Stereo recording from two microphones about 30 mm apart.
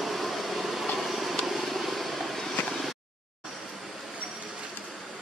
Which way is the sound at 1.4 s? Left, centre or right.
Centre.